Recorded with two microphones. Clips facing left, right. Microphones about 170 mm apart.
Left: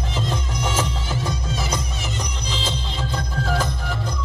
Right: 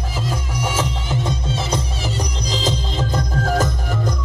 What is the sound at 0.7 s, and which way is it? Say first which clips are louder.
Music: right 2 dB; 20° right (ahead or behind).